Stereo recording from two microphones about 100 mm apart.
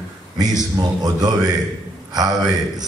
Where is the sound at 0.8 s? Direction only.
40° right (ahead or behind).